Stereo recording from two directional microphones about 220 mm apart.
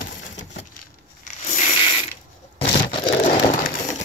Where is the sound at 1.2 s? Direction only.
35° left (ahead or behind).